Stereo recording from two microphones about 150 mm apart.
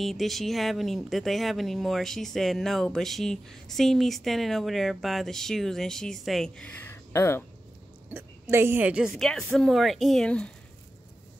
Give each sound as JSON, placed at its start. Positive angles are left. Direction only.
{"t": 0.0, "sound": "speech", "side_deg": 0}
{"t": 7.1, "sound": "speech", "side_deg": 20}
{"t": 8.1, "sound": "a woman's voice", "side_deg": -15}
{"t": 9.1, "sound": "speech", "side_deg": 5}